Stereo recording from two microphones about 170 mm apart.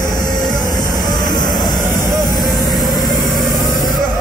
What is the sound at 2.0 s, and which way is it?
Vehicle, 20° right (ahead or behind).